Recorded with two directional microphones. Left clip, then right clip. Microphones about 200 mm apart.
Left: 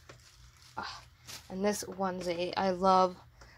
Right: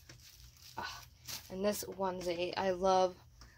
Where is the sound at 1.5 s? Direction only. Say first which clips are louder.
Left 3 dB; 45° left (ahead or behind).